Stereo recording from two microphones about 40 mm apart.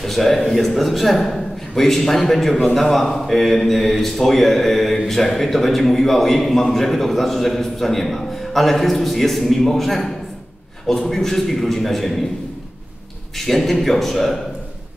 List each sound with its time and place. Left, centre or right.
0.0 s a man's voice: centre
13.5 s speech: centre